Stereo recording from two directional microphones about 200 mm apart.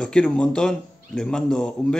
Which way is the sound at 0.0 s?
5° left (ahead or behind).